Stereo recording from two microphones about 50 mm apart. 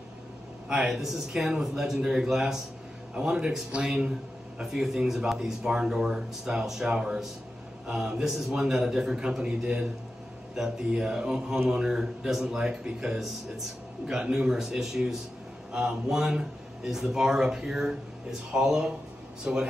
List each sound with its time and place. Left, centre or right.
0.7 s speech: centre